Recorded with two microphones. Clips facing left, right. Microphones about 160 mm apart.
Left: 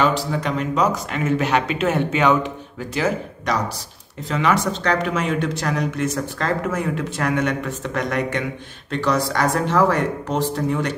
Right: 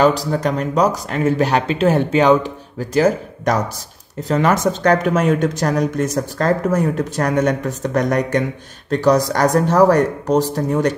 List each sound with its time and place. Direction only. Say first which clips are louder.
0.0 s speech: right 5 dB; 40° right (ahead or behind)